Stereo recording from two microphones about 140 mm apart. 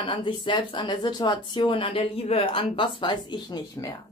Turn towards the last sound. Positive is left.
turn(degrees=30)  # may be behind; listen again after turning